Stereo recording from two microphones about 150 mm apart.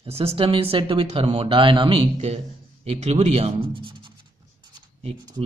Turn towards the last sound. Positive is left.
turn(degrees=-25)  # may be behind; listen again after turning